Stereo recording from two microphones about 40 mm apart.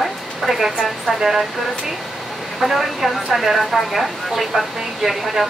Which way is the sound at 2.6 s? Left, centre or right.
Centre.